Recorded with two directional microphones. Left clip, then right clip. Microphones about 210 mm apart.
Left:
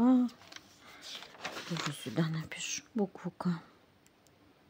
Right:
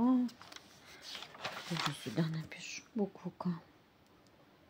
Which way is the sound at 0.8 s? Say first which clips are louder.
Left 2 dB; 15° left (ahead or behind).